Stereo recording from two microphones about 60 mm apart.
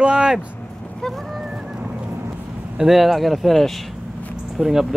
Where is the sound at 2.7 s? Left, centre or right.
Centre.